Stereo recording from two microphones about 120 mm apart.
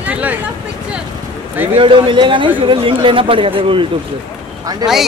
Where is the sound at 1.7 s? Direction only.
45° right (ahead or behind).